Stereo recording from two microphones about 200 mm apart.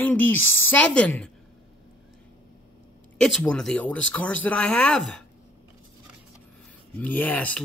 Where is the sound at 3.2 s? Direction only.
Centre (ahead or behind).